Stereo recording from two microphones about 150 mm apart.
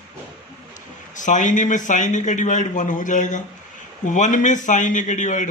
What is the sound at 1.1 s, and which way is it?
A man's voice, 55° left (ahead or behind).